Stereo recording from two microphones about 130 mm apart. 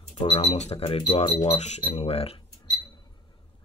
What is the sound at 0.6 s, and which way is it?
Speech, 50° left (ahead or behind).